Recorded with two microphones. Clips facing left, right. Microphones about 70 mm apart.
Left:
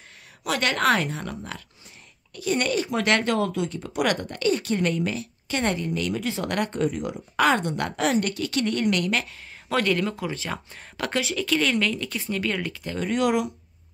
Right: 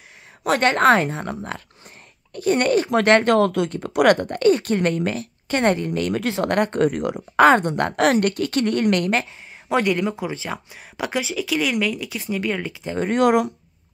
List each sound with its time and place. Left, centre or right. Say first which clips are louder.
0.4 s speech: right 7 dB; right
3.3 s speech: right 7 dB; right
7.3 s speech: right 7 dB; right
8.0 s speech: right 6 dB; right
9.7 s speech: right 3 dB; centre
12.9 s speech: right 6 dB; right